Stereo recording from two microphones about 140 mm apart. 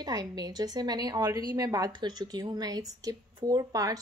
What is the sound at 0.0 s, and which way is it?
A woman's voice, 30° right (ahead or behind).